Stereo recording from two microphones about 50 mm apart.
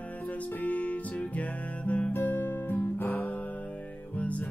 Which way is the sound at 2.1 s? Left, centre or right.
Left.